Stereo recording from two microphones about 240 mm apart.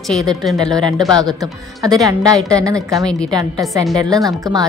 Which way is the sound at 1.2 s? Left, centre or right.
Centre.